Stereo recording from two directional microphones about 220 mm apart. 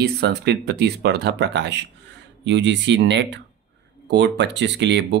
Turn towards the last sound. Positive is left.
turn(degrees=-55)  # may be behind; listen again after turning